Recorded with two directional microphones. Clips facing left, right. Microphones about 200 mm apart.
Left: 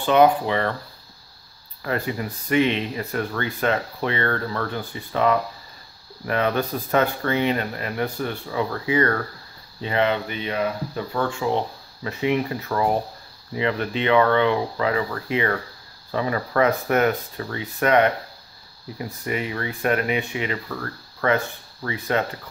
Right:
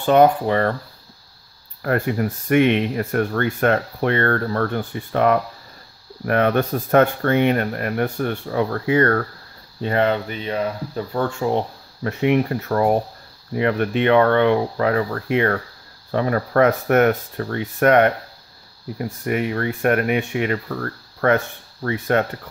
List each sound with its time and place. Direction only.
0.0 s speech: 45° right (ahead or behind)
1.8 s speech: 55° right (ahead or behind)